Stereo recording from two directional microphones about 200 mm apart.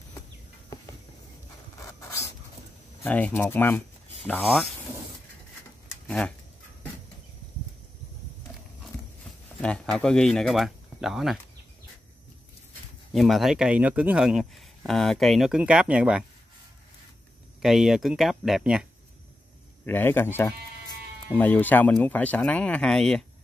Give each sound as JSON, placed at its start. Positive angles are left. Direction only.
{"t": 1.8, "sound": "writing", "side_deg": 15}
{"t": 3.0, "sound": "speech", "side_deg": 10}
{"t": 6.0, "sound": "a sound", "side_deg": 5}
{"t": 9.6, "sound": "speech", "side_deg": 5}
{"t": 13.1, "sound": "speech", "side_deg": 0}
{"t": 17.6, "sound": "speech", "side_deg": 0}
{"t": 19.8, "sound": "speech", "side_deg": 10}